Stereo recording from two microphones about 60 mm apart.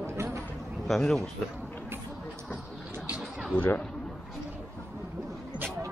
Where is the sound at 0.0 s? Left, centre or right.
Right.